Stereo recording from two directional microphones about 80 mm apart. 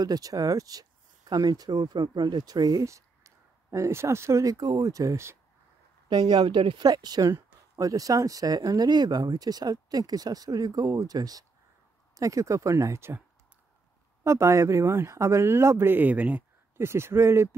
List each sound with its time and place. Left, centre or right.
0.0 s speech: right
2.9 s speech: right
4.6 s speech: right
6.0 s speech: right
6.8 s speech: right
14.2 s speech: right; by 16.4 s centre
16.7 s speech: right